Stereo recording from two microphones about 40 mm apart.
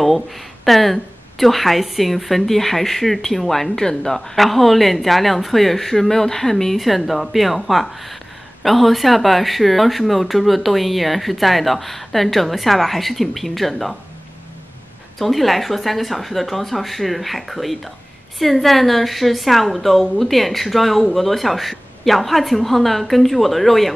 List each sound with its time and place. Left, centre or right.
0.7 s a woman's voice: centre
4.4 s a woman's voice: centre
15.1 s a woman's voice: centre